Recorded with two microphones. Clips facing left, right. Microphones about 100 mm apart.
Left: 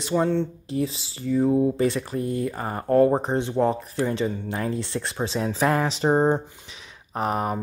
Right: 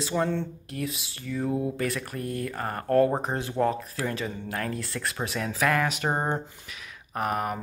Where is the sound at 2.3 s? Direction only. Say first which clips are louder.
Left 4 dB; 10° left (ahead or behind).